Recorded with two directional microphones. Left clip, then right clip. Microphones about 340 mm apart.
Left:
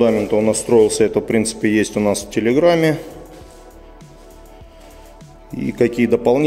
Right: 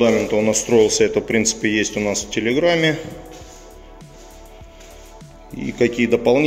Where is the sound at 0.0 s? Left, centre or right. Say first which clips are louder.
Left 1 dB; centre.